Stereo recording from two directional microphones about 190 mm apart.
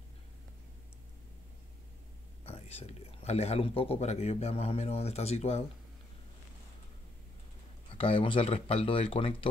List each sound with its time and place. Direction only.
2.4 s speech: 30° left (ahead or behind)
8.0 s speech: 25° left (ahead or behind)